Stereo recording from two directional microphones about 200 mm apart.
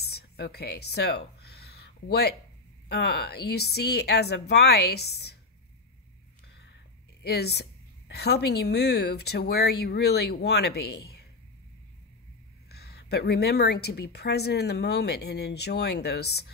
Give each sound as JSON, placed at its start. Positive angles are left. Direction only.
{"t": 0.0, "sound": "a sound", "side_deg": 55}
{"t": 2.9, "sound": "a woman's voice", "side_deg": 55}
{"t": 7.2, "sound": "a woman's voice", "side_deg": 55}
{"t": 12.6, "sound": "a woman's voice", "side_deg": 55}